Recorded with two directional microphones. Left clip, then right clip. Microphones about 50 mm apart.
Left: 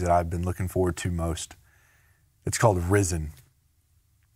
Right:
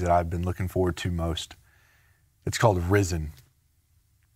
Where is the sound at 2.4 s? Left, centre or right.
Centre.